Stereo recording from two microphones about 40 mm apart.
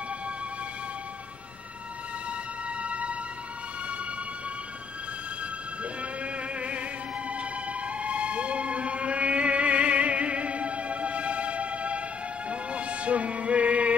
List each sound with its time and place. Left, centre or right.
2.8 s music: right
6.2 s music: right